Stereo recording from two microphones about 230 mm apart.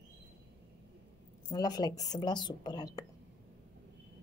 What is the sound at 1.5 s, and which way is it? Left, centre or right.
Speech, centre.